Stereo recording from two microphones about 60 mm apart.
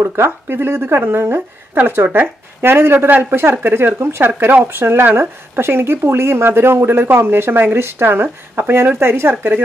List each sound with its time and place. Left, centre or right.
0.0 s speech: right